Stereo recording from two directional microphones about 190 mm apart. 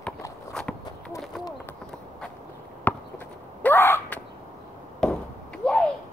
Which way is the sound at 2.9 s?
10° left (ahead or behind).